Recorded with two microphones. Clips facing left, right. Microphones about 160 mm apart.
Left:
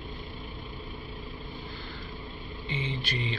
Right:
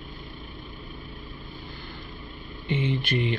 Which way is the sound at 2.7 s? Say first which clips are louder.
Right 8 dB; 60° right (ahead or behind).